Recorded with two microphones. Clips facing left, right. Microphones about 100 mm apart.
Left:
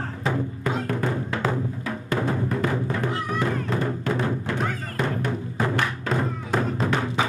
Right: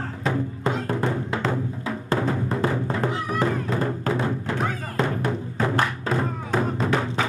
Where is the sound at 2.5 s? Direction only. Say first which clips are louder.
Right 1 dB; 25° right (ahead or behind).